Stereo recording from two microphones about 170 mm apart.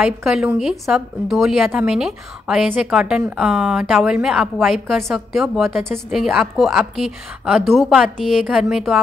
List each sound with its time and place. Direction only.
0.0 s a woman's voice: 5° right (ahead or behind)